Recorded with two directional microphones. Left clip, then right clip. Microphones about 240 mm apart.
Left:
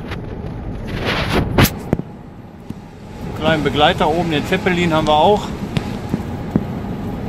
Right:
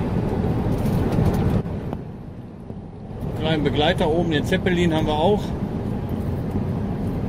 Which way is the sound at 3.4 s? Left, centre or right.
Centre.